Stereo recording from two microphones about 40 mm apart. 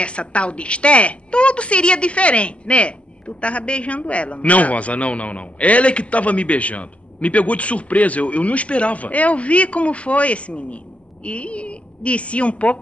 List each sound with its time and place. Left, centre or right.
0.0 s a woman's voice: left